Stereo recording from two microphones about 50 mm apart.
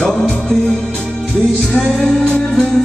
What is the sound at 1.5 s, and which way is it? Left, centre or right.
Music, left.